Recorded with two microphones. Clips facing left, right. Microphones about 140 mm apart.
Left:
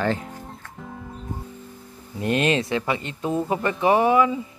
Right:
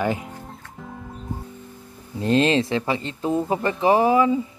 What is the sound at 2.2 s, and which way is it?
Speech, 30° right (ahead or behind).